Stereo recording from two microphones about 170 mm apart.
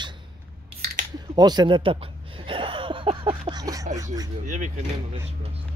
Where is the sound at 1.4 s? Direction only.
25° right (ahead or behind).